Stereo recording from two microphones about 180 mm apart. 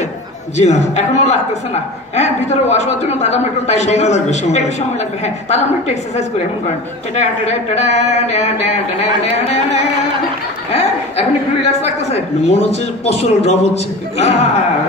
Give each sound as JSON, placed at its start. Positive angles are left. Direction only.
{"t": 0.6, "sound": "a man's voice", "side_deg": 40}